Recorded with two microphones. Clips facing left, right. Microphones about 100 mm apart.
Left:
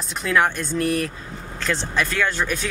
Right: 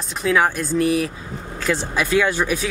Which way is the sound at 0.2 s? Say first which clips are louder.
Right 2 dB; 5° right (ahead or behind).